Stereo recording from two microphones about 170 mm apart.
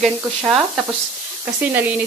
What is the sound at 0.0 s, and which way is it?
Speech, 5° right (ahead or behind).